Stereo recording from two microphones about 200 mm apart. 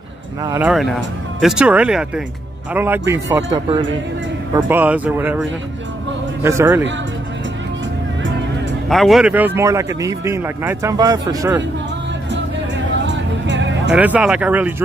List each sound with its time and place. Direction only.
0.4 s a man's voice: 15° right (ahead or behind)
0.7 s a man's voice: centre (ahead or behind)
3.5 s speech: 25° right (ahead or behind)
4.6 s a man's voice: 10° right (ahead or behind)
6.4 s a man's voice: 10° right (ahead or behind)
8.8 s a man's voice: centre (ahead or behind); by 11.6 s 15° right (ahead or behind)
13.0 s music: 65° right (ahead or behind)
13.9 s a man's voice: 5° right (ahead or behind)